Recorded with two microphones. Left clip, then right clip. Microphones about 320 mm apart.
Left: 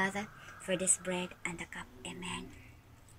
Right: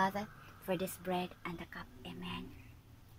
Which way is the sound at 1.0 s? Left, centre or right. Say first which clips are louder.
Left 1 dB; centre.